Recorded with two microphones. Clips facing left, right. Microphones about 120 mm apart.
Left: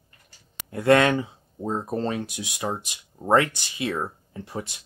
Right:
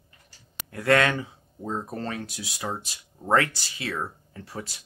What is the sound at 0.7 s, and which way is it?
Speech, 25° left (ahead or behind).